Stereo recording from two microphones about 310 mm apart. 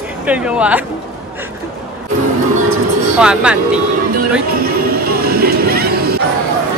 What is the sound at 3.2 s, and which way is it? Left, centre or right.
Speech, centre.